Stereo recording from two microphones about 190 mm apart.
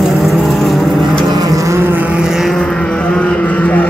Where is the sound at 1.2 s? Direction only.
20° right (ahead or behind); by 3.8 s 10° left (ahead or behind).